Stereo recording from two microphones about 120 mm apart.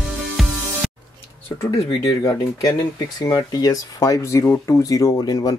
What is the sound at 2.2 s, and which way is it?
Speech, 25° left (ahead or behind).